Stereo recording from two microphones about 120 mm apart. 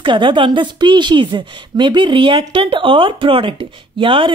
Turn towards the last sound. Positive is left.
turn(degrees=-45)  # may be behind; listen again after turning